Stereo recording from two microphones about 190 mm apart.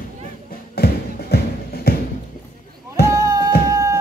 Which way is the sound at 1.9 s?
55° left (ahead or behind).